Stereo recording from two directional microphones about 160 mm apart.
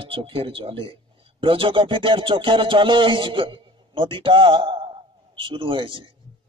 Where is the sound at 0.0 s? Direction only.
35° right (ahead or behind).